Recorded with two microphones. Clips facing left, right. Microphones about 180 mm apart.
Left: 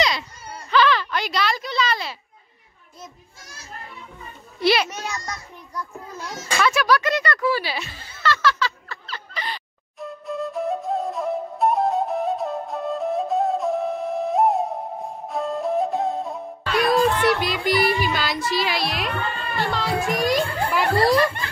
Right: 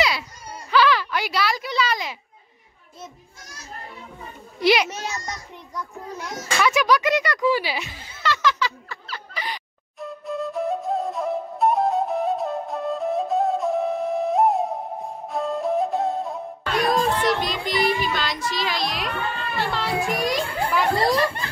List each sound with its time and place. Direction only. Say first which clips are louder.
0.7 s a sound: even; 10° right (ahead or behind)
4.6 s a child's voice: right 1 dB; 15° right (ahead or behind)
4.8 s a child's voice: even; 25° right (ahead or behind)
6.1 s speech: even; 15° right (ahead or behind)
9.9 s flute: even; centre (ahead or behind)
17.2 s speech: left 2 dB; 5° left (ahead or behind)
20.1 s children playing: left 3 dB; centre (ahead or behind)
21.0 s speech: left 3 dB; 25° right (ahead or behind)